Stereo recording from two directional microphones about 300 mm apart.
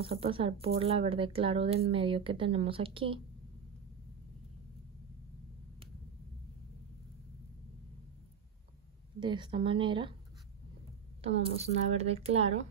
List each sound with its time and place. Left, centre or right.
0.0 s speech: centre
9.2 s speech: centre
11.2 s speech: right